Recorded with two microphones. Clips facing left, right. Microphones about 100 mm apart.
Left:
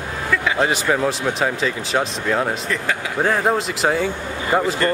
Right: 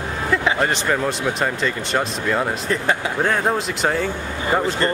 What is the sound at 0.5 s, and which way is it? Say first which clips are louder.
Speech: left 1 dB; 5° left (ahead or behind).